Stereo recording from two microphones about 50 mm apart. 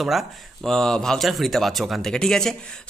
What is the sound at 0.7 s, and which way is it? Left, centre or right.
Speech, centre.